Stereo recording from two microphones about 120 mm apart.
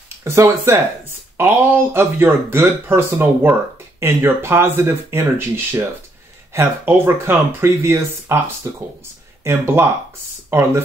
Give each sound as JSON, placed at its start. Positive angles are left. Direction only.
{"t": 0.2, "sound": "speech", "side_deg": -25}